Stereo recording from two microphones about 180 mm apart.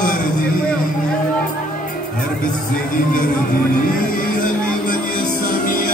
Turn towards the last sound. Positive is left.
turn(degrees=50)  # may be behind; listen again after turning